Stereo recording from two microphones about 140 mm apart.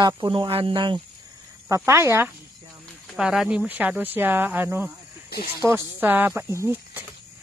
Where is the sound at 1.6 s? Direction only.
20° right (ahead or behind).